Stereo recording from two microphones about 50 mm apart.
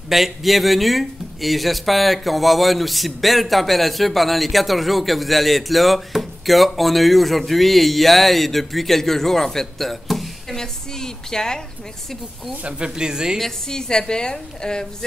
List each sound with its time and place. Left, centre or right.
0.1 s speech: centre
10.5 s a woman's voice: centre
12.6 s speech: centre
13.4 s a woman's voice: centre